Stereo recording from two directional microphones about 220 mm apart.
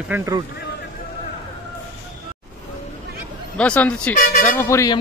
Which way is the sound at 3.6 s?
5° left (ahead or behind).